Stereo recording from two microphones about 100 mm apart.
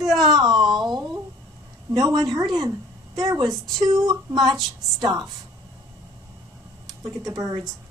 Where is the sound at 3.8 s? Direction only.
35° right (ahead or behind).